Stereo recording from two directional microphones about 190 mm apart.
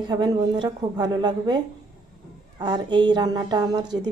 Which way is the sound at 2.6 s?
25° right (ahead or behind).